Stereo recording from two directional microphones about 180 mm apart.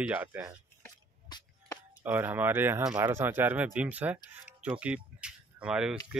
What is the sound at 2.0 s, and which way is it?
Speech, 10° right (ahead or behind).